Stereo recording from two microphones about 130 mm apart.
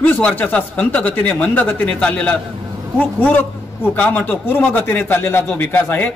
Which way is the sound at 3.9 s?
10° left (ahead or behind).